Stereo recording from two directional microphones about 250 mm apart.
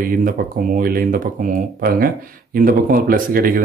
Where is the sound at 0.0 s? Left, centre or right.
Right.